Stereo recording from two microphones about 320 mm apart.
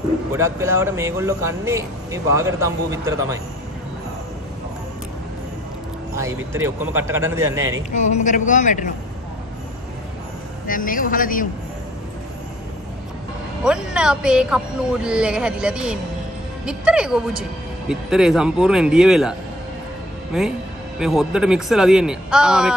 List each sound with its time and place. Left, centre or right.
0.3 s speech: centre
6.1 s speech: centre
7.9 s a man's voice: left
10.7 s a man's voice: left
13.7 s speech: centre
20.3 s speech: centre